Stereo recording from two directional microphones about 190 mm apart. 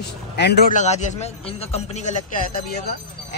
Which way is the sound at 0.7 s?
35° left (ahead or behind).